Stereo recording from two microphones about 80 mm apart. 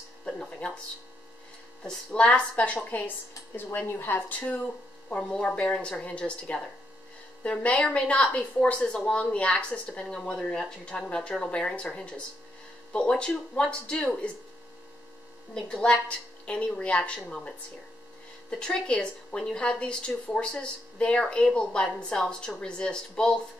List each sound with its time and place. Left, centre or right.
0.2 s a woman's voice: centre
1.8 s a woman's voice: centre
5.1 s a woman's voice: centre
15.5 s a woman's voice: centre